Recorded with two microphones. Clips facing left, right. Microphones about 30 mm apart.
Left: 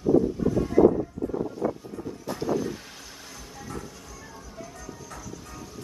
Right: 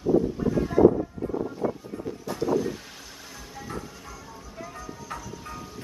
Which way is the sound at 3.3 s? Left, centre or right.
Centre.